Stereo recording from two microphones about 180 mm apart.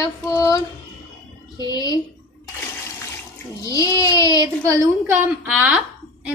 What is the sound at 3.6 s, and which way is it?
Speech, 20° left (ahead or behind).